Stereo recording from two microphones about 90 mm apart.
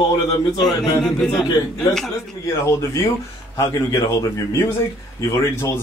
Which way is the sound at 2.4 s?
35° left (ahead or behind).